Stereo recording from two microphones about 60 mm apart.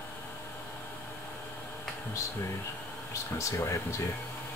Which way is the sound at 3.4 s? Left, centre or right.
Left.